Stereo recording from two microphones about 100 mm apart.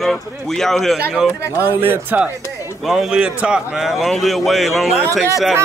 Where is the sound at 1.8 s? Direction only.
20° right (ahead or behind).